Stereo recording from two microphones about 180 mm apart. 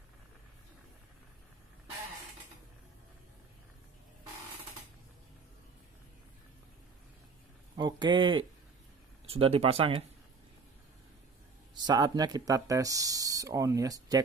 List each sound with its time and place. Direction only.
7.7 s speech: 25° right (ahead or behind)
11.7 s speech: 25° right (ahead or behind)